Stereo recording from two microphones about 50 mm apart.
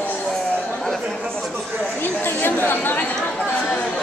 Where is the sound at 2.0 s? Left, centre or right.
Left.